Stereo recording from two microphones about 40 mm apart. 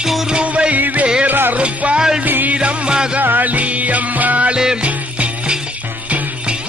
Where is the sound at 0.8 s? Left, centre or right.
Right.